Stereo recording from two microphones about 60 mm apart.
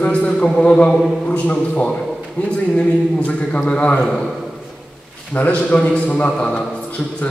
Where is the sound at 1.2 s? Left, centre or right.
Centre.